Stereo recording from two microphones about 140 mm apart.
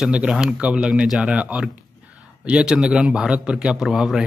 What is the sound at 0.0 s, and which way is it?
A man's voice, 5° right (ahead or behind).